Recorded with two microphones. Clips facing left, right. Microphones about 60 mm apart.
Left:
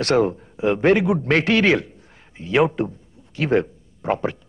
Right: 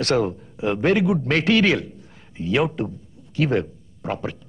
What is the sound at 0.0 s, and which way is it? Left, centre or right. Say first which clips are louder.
A man's voice: left 3 dB; left.